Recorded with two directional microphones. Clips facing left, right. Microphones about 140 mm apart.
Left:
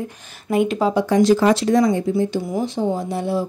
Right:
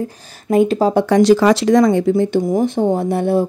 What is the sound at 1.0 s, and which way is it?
Speech, 70° right (ahead or behind).